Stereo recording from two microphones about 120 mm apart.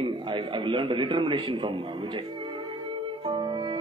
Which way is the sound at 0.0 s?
45° right (ahead or behind).